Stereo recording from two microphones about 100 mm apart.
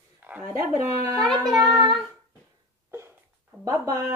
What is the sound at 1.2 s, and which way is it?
Speech, centre (ahead or behind).